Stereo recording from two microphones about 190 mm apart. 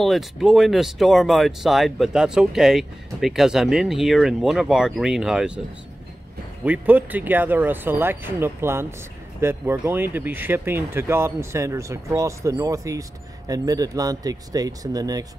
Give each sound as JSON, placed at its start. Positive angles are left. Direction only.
{"t": 0.0, "sound": "speech", "side_deg": 0}
{"t": 6.6, "sound": "speech", "side_deg": -5}